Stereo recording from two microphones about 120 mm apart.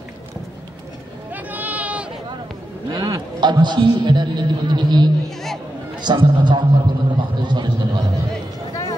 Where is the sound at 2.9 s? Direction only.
35° right (ahead or behind).